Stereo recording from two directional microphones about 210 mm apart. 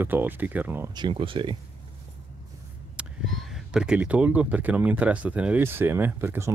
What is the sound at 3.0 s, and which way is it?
Speech, centre (ahead or behind).